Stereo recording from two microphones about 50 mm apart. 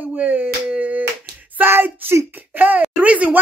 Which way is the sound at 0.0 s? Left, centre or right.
Right.